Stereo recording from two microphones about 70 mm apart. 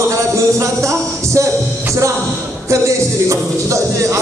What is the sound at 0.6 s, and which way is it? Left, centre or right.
Speech, right.